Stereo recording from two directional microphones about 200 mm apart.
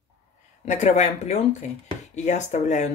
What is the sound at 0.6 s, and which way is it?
Speech, 35° left (ahead or behind).